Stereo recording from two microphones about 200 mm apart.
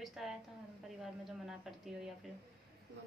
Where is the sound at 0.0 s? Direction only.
Centre (ahead or behind).